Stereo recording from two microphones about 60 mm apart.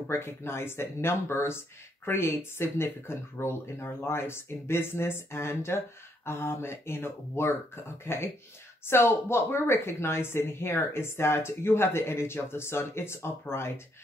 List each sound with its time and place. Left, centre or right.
0.1 s a woman's voice: left